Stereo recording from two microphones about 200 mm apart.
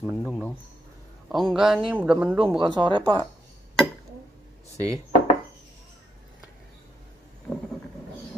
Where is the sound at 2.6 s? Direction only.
20° right (ahead or behind).